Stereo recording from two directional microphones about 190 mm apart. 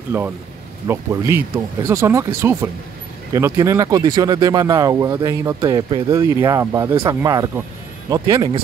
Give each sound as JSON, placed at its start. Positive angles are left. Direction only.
{"t": 0.1, "sound": "speech", "side_deg": -10}